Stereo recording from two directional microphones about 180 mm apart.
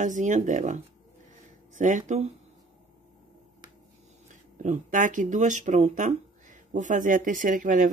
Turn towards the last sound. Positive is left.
turn(degrees=-45)  # may be behind; listen again after turning